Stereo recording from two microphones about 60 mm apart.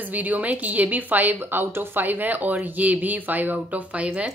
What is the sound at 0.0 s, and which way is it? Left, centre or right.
A woman's voice, right.